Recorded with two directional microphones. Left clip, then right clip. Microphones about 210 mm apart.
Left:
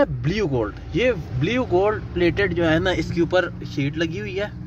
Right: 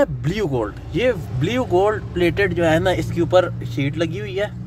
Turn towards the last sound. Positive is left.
turn(degrees=0)  # may be behind; listen again after turning